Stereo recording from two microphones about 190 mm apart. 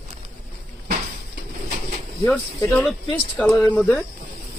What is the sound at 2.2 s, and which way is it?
Speech, 15° left (ahead or behind).